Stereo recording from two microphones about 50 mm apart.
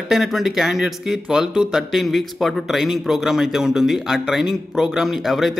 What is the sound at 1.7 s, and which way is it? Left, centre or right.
A man's voice, centre.